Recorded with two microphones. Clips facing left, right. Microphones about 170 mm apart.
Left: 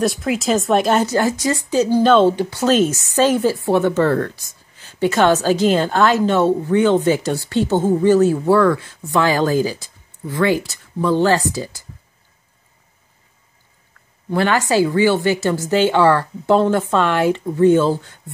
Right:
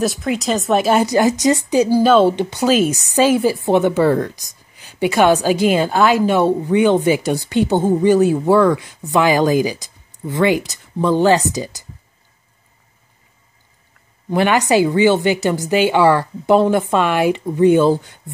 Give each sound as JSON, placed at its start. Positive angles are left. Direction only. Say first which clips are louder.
{"t": 0.0, "sound": "speech", "louder": "even", "side_deg": 0}
{"t": 2.3, "sound": "speech", "louder": "even", "side_deg": -15}
{"t": 14.3, "sound": "speech", "louder": "right 2 dB", "side_deg": -15}